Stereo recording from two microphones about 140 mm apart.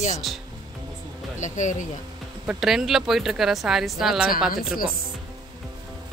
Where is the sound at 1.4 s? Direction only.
60° left (ahead or behind).